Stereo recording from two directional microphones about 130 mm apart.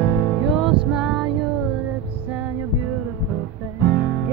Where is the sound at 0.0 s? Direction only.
25° left (ahead or behind).